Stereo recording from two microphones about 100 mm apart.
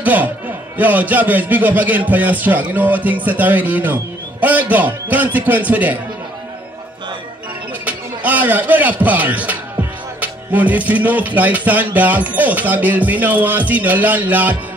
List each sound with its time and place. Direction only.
0.0 s a man's voice: 15° right (ahead or behind)
7.8 s speech: 15° right (ahead or behind)